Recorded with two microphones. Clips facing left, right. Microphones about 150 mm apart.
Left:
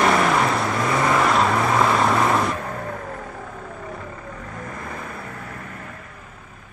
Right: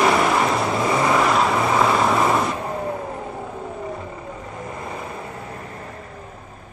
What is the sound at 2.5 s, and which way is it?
Vehicle, 20° right (ahead or behind).